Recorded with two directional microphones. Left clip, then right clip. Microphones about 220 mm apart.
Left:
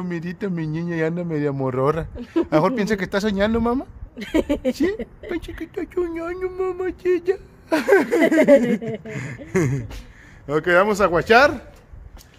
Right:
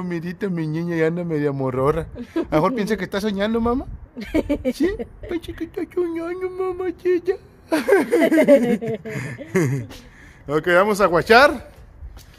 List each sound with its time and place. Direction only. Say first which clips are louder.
0.0 s speech: right 1 dB; 5° right (ahead or behind)
4.2 s speech: left 1 dB; 25° left (ahead or behind)
5.3 s a man's voice: right 1 dB; 5° left (ahead or behind); by 11.6 s 15° right (ahead or behind)